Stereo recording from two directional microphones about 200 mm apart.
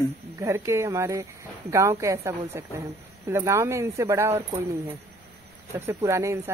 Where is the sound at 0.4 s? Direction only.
15° right (ahead or behind).